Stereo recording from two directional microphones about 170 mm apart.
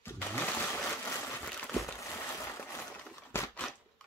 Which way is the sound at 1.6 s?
Centre (ahead or behind).